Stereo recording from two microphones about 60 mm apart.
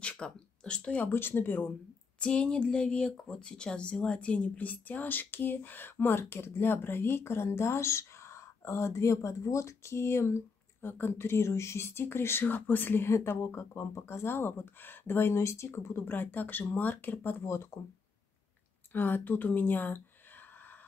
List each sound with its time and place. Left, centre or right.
0.0 s speech: centre
1.0 s speech: left
1.7 s speech: centre; by 12.4 s left
12.4 s speech: left
18.9 s speech: left